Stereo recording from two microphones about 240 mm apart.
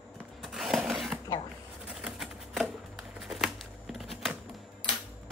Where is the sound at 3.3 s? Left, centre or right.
Centre.